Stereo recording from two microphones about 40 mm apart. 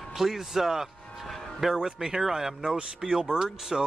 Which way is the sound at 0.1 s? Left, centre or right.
Centre.